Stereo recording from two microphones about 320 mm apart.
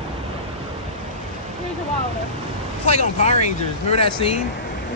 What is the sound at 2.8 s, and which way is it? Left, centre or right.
Speech, left.